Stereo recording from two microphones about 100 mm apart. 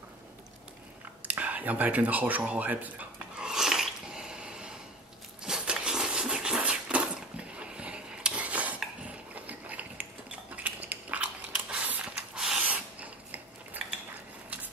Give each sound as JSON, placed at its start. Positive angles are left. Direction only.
{"t": 1.2, "sound": "a sound", "side_deg": -15}
{"t": 9.3, "sound": "ratchet", "side_deg": -15}
{"t": 10.5, "sound": "biting", "side_deg": -15}
{"t": 13.8, "sound": "mechanisms", "side_deg": -15}